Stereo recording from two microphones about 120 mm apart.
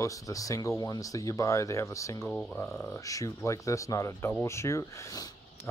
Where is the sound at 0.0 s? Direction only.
30° left (ahead or behind).